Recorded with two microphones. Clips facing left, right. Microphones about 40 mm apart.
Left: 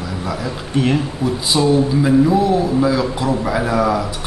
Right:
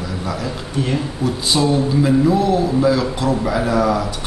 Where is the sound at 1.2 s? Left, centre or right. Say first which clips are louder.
Left 1 dB; centre.